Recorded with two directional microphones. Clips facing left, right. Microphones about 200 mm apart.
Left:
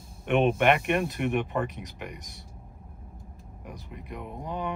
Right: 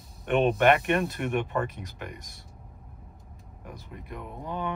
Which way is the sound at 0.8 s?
15° left (ahead or behind).